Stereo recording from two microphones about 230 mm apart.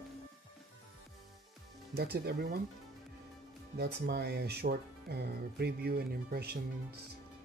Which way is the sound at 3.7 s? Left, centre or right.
Right.